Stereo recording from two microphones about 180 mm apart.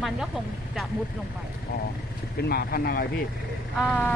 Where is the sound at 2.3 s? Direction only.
60° left (ahead or behind).